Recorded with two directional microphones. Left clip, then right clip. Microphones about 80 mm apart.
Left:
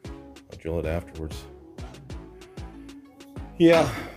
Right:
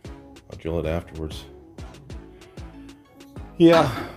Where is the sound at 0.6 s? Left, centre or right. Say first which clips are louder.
Right 2 dB; centre.